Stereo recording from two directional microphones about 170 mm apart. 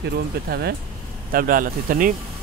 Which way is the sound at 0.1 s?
70° right (ahead or behind).